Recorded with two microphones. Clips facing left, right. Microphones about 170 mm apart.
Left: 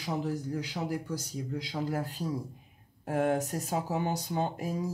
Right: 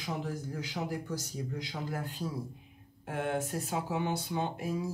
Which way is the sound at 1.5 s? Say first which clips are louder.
Left 7 dB; 40° left (ahead or behind).